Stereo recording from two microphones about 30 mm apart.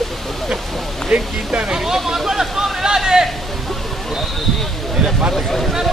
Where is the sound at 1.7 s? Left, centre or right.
Centre.